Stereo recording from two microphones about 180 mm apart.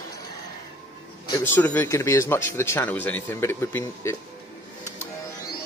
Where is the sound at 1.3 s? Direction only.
10° left (ahead or behind).